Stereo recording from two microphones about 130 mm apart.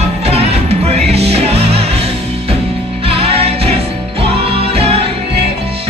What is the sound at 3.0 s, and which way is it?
Music, 50° right (ahead or behind).